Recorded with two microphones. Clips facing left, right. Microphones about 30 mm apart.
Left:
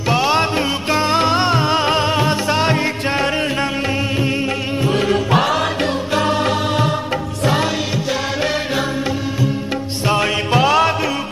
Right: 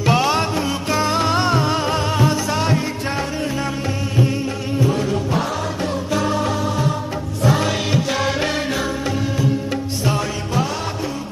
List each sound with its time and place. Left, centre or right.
0.0 s music: centre
0.6 s music: left
6.1 s music: left
10.1 s music: left